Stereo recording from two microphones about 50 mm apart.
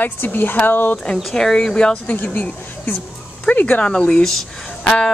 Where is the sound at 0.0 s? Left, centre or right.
Left.